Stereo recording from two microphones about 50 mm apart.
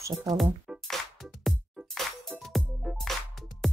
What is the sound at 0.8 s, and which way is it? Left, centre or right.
Music, centre.